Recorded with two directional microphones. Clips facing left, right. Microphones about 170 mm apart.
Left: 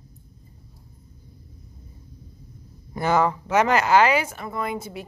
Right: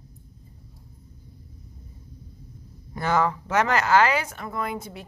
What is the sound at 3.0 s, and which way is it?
Speech, 15° left (ahead or behind).